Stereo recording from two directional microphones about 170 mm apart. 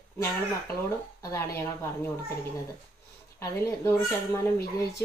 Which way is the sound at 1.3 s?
15° left (ahead or behind).